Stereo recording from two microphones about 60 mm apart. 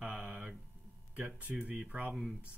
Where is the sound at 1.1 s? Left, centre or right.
Right.